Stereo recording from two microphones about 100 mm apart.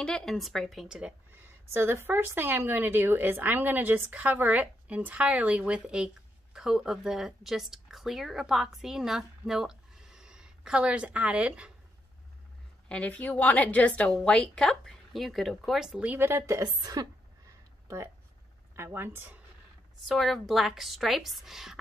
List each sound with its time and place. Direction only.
0.0 s a woman's voice: 5° left (ahead or behind)
1.3 s speech: 25° right (ahead or behind)
12.8 s a woman's voice: 10° left (ahead or behind); by 16.1 s 5° right (ahead or behind)
16.1 s a woman's voice: 25° right (ahead or behind); by 17.1 s 40° right (ahead or behind)
17.8 s a woman's voice: 30° right (ahead or behind)
20.1 s a woman's voice: centre (ahead or behind)